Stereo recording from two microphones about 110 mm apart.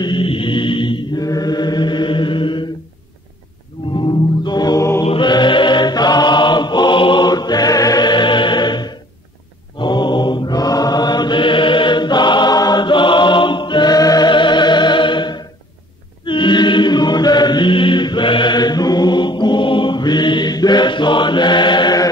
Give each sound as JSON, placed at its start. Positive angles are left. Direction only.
{"t": 0.0, "sound": "mantra", "side_deg": 50}
{"t": 1.2, "sound": "chant", "side_deg": 35}
{"t": 3.9, "sound": "music", "side_deg": 40}
{"t": 5.2, "sound": "choir", "side_deg": 45}
{"t": 9.8, "sound": "mantra", "side_deg": 45}
{"t": 16.3, "sound": "chant", "side_deg": 45}